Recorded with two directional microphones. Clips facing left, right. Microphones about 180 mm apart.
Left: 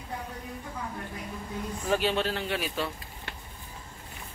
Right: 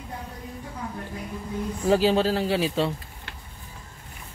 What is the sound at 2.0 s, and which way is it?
Speech, 35° right (ahead or behind).